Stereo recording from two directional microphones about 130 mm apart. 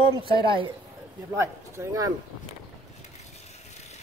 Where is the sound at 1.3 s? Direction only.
25° right (ahead or behind).